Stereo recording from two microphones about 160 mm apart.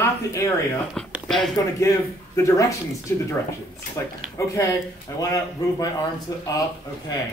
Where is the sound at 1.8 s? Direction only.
20° left (ahead or behind).